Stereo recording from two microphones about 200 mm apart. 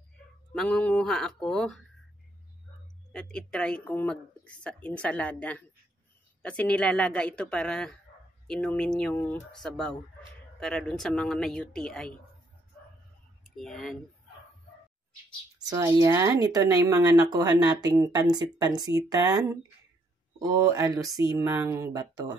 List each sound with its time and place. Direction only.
0.5 s a woman's voice: 5° left (ahead or behind)
3.1 s a woman's voice: 5° left (ahead or behind)
13.4 s speech: centre (ahead or behind)
15.7 s speech: 15° right (ahead or behind)